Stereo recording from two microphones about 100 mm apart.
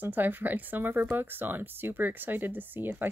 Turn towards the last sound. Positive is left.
turn(degrees=-20)  # may be behind; listen again after turning